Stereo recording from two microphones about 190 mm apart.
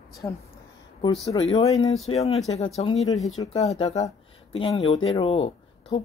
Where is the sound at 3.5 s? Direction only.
35° left (ahead or behind).